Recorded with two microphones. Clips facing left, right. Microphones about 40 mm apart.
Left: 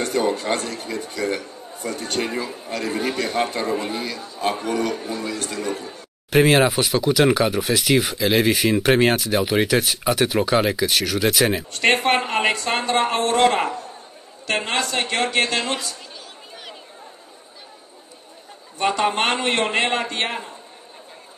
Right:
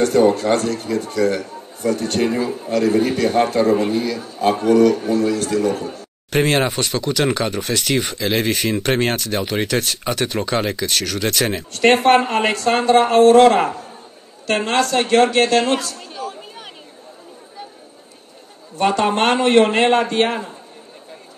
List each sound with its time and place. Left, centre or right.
0.0 s a man's voice: centre
16.2 s a sound: right
18.8 s a man's voice: centre